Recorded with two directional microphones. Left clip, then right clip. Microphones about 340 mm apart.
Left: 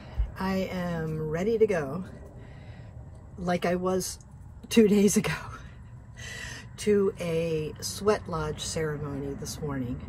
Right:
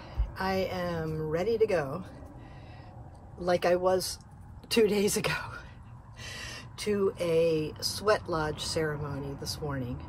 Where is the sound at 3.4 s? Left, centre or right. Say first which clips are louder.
Right 2 dB; centre.